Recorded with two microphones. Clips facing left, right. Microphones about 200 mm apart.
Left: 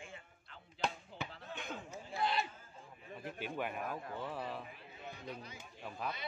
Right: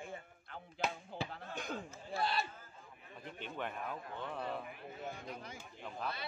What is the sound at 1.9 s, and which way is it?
A man's voice, 15° left (ahead or behind).